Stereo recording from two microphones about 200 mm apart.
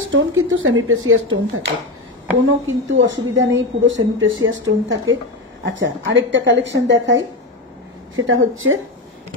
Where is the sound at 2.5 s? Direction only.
75° right (ahead or behind).